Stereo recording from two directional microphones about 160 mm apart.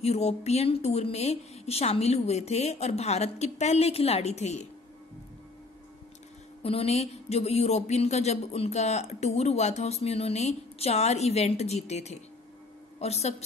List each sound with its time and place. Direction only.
0.0 s a woman's voice: 40° left (ahead or behind)
6.6 s a woman's voice: 40° left (ahead or behind)